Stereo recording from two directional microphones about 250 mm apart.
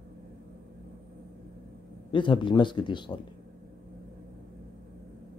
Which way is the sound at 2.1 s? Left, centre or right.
Centre.